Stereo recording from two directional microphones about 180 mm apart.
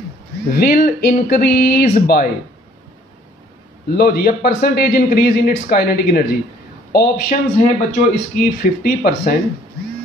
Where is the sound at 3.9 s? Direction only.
60° left (ahead or behind).